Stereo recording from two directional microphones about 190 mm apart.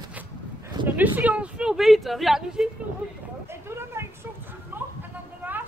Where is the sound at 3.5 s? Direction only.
15° right (ahead or behind).